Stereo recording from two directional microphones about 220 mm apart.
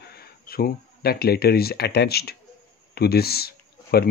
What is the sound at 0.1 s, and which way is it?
Speech, 45° left (ahead or behind).